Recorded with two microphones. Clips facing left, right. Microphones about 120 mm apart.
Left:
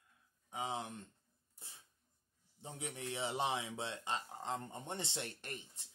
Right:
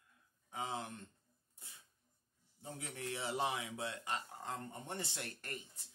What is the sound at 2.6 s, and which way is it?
Speech, 20° left (ahead or behind).